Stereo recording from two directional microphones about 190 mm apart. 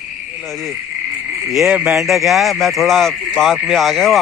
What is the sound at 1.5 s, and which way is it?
Speech, 5° right (ahead or behind).